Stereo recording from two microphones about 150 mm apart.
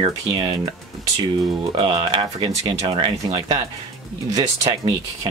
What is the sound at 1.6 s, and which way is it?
Speech, 30° right (ahead or behind).